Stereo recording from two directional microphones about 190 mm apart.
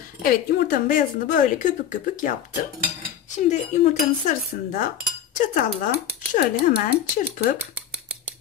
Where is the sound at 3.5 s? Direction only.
35° left (ahead or behind).